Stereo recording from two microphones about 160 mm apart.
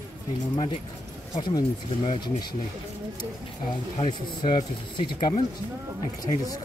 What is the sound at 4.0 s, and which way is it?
Speech, 30° left (ahead or behind).